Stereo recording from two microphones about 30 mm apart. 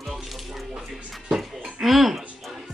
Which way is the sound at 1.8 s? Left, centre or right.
Centre.